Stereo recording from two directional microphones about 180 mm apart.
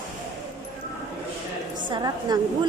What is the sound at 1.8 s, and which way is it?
Speech, 20° right (ahead or behind).